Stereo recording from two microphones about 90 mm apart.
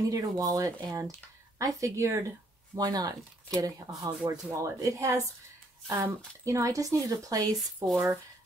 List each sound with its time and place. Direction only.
0.1 s speech: 40° right (ahead or behind)
2.8 s speech: 45° right (ahead or behind)
7.5 s speech: centre (ahead or behind)